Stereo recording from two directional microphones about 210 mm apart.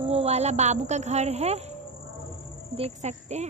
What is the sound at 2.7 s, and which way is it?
Speech, 30° right (ahead or behind).